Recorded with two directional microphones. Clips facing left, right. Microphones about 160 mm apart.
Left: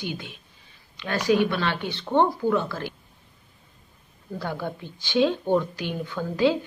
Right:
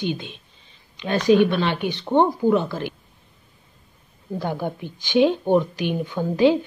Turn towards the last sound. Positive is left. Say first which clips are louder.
# right 5 dB
turn(degrees=-20)  # may be behind; listen again after turning